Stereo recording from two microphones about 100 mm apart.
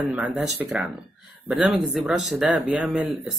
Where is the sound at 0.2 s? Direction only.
15° right (ahead or behind).